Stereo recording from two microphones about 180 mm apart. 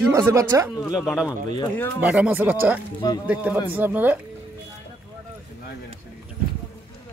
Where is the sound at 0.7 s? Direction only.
20° left (ahead or behind).